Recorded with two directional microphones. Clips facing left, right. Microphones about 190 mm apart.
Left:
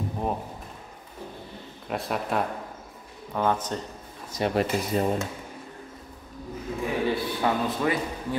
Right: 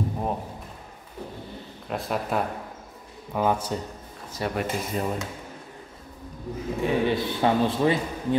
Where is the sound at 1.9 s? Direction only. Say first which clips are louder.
Right 1 dB; centre (ahead or behind).